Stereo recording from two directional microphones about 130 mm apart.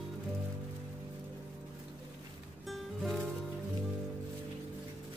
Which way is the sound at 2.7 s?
Centre (ahead or behind).